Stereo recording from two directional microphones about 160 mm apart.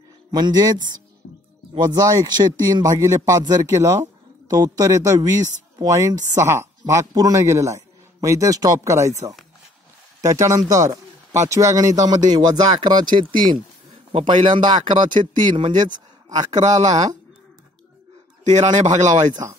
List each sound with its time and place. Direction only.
0.3 s speech: 25° right (ahead or behind)
1.2 s music: 65° left (ahead or behind)
1.7 s speech: 25° right (ahead or behind)
10.2 s speech: 20° right (ahead or behind)
16.8 s speech: 45° right (ahead or behind)
18.4 s speech: 45° right (ahead or behind)